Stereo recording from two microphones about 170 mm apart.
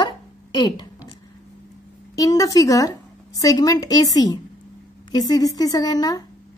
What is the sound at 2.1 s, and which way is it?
A woman's voice, 20° left (ahead or behind).